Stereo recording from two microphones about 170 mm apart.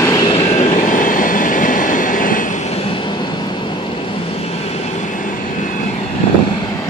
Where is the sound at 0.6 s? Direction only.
50° left (ahead or behind).